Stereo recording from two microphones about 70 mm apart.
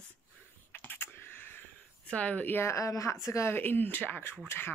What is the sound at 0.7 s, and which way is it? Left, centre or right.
Computer keyboard, left.